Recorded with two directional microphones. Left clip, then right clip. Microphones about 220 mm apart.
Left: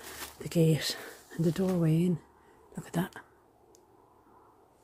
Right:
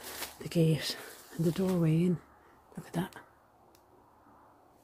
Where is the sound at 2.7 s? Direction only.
20° left (ahead or behind).